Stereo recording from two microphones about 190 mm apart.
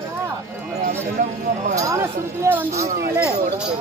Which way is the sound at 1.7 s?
15° right (ahead or behind).